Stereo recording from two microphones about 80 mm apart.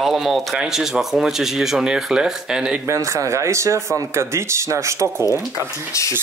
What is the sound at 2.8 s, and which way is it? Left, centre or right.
Speech, right.